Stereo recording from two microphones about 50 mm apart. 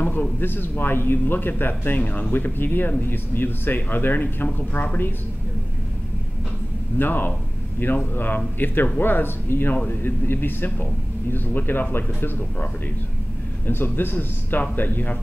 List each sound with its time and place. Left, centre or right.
0.0 s a man's voice: left
7.0 s a man's voice: left
13.7 s a man's voice: left